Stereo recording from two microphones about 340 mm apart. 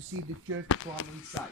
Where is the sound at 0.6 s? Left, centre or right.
Left.